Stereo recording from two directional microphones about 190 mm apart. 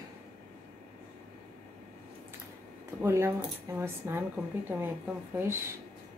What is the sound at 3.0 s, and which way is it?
Speech, 15° right (ahead or behind).